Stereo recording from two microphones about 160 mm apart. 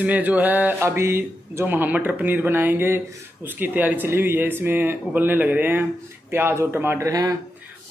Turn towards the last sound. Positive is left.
turn(degrees=-20)  # may be behind; listen again after turning